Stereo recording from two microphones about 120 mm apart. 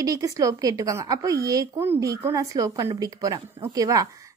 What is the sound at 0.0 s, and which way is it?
A woman's voice, 30° right (ahead or behind).